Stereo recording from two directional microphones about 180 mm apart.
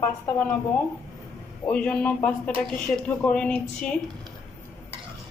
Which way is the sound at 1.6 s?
10° left (ahead or behind).